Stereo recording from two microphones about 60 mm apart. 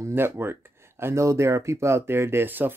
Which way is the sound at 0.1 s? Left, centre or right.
Right.